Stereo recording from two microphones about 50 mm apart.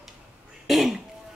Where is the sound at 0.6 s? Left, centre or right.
Centre.